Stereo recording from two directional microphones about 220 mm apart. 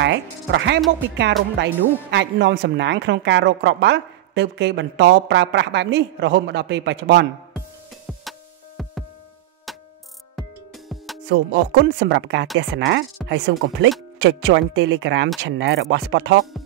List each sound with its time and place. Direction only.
0.0 s speech: 55° right (ahead or behind)
0.7 s speech: centre (ahead or behind)
1.6 s speech: 55° right (ahead or behind)
8.2 s music: centre (ahead or behind)
11.2 s speech: 50° right (ahead or behind)